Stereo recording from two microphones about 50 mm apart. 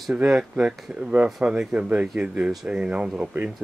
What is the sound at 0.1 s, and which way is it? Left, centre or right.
Speech, right.